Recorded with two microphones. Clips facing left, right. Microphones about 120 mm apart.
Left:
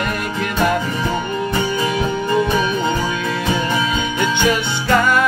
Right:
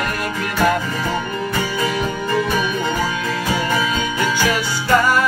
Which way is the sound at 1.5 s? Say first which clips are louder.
Left 1 dB; 25° left (ahead or behind).